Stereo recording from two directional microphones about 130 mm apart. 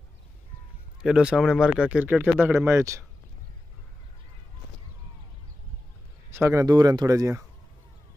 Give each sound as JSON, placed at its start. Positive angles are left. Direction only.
{"t": 1.0, "sound": "speech", "side_deg": -5}
{"t": 6.3, "sound": "speech", "side_deg": -20}